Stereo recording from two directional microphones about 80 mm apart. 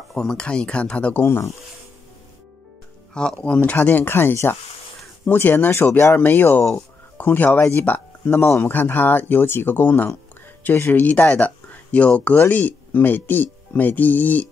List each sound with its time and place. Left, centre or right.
0.1 s speech: centre
1.2 s speech: left
3.4 s speech: centre